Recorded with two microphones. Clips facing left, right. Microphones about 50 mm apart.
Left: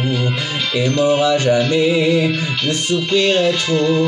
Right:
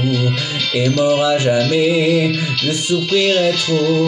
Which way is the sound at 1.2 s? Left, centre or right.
Centre.